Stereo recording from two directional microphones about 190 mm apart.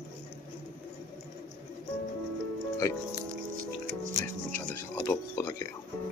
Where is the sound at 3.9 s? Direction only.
45° right (ahead or behind).